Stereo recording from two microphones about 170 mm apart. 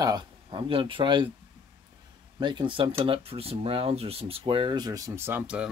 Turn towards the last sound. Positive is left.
turn(degrees=-5)  # may be behind; listen again after turning